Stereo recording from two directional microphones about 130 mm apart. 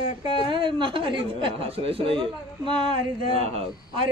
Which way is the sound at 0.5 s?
40° right (ahead or behind).